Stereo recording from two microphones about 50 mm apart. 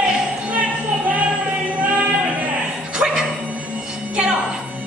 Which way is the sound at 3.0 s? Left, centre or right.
Centre.